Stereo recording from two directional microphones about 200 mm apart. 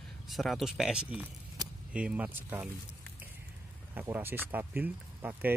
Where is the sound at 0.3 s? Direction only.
Centre (ahead or behind).